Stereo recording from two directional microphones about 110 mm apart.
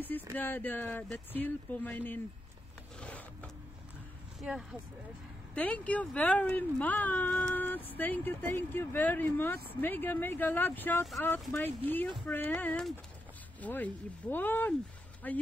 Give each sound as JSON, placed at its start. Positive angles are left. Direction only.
{"t": 0.4, "sound": "speech", "side_deg": 15}
{"t": 3.0, "sound": "a sound", "side_deg": 10}
{"t": 4.4, "sound": "speech", "side_deg": 0}
{"t": 5.5, "sound": "speech", "side_deg": 15}